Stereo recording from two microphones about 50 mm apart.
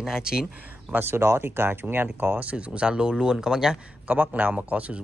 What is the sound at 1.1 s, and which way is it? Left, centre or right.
Speech, right.